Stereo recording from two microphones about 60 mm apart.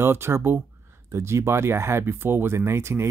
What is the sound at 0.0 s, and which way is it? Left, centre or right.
Speech, right.